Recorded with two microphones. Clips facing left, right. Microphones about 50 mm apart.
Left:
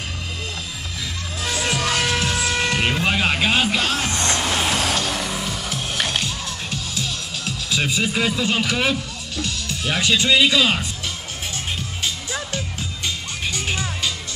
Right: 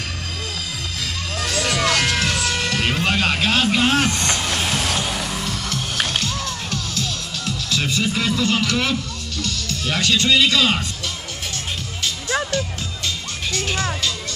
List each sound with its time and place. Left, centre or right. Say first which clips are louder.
1.0 s music: right 1 dB; right
2.4 s music: left 1 dB; left
3.0 s a sound: even; centre
4.1 s music: even; left
4.4 s music: left 1 dB; centre
4.9 s music: even; centre
5.2 s music: even; centre
9.4 s speech: even; centre
13.5 s music: right 2 dB; centre